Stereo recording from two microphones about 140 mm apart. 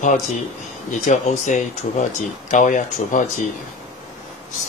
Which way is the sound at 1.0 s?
60° left (ahead or behind).